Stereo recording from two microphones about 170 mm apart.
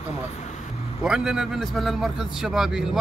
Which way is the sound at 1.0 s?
5° right (ahead or behind).